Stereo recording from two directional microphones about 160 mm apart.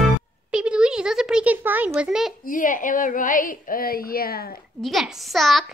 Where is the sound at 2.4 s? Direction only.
55° left (ahead or behind); by 4.6 s 70° left (ahead or behind).